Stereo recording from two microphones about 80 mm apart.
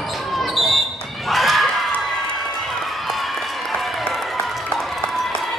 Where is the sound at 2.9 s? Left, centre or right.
Centre.